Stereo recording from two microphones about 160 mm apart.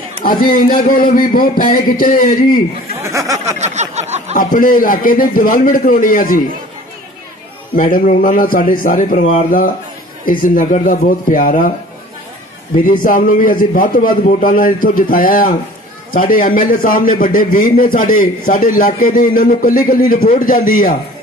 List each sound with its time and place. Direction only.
0.2 s a man's voice: 60° left (ahead or behind)
3.0 s a sound: 20° right (ahead or behind)
3.4 s a sound: 45° right (ahead or behind)
4.4 s a man's voice: 60° left (ahead or behind)
7.7 s a man's voice: 60° left (ahead or behind)
10.2 s a man's voice: 60° left (ahead or behind)
12.7 s a man's voice: 60° left (ahead or behind)